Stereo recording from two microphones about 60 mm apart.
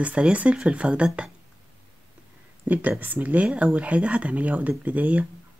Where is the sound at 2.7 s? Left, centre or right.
Right.